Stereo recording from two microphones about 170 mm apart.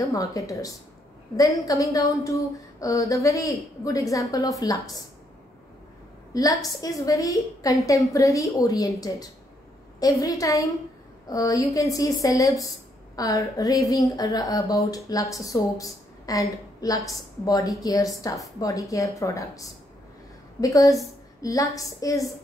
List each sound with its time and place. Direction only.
0.0 s speech: 20° left (ahead or behind)
6.3 s a woman's voice: 20° left (ahead or behind)